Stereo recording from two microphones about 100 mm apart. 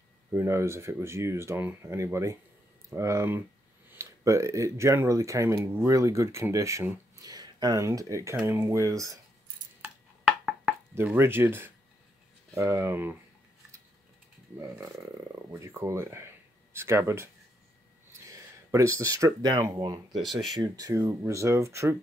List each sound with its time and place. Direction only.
0.3 s speech: 25° right (ahead or behind)
11.1 s speech: 25° right (ahead or behind)
15.6 s speech: 30° right (ahead or behind); by 20.2 s 45° right (ahead or behind)
20.2 s speech: centre (ahead or behind)
20.5 s speech: 40° right (ahead or behind)